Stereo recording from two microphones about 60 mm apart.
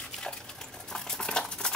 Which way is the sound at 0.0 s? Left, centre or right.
Centre.